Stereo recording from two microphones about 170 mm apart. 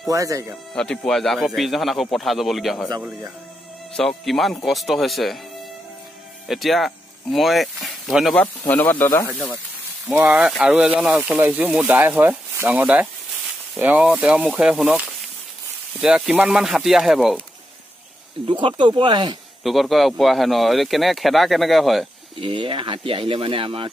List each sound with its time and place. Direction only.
0.1 s speech: 20° right (ahead or behind)
0.7 s speech: 5° left (ahead or behind)
3.9 s speech: centre (ahead or behind)
6.4 s speech: centre (ahead or behind); by 9.3 s 15° left (ahead or behind)
9.3 s speech: centre (ahead or behind)
10.1 s speech: 15° right (ahead or behind)
10.4 s speech: 5° right (ahead or behind)
18.5 s speech: 30° right (ahead or behind)
19.6 s speech: centre (ahead or behind)
22.4 s speech: 30° right (ahead or behind)